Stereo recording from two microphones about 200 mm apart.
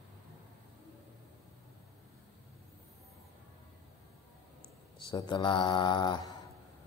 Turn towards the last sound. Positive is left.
turn(degrees=20)  # may be behind; listen again after turning